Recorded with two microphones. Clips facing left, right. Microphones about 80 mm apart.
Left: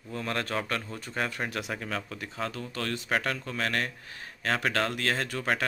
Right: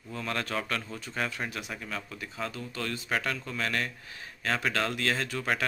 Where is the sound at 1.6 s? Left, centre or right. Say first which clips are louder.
Left 4 dB; left.